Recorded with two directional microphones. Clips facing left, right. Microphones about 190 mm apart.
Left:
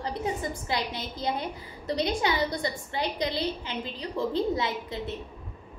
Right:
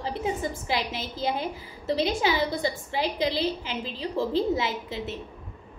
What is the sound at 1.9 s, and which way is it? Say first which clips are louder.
A woman's voice: right 2 dB; 90° right.